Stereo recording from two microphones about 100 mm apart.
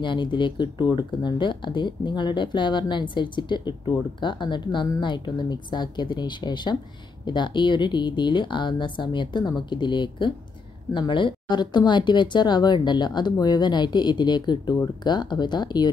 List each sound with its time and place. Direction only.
0.0 s speech: 50° left (ahead or behind)